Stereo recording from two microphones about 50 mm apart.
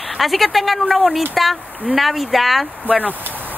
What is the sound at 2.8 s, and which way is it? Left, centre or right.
Speech, right.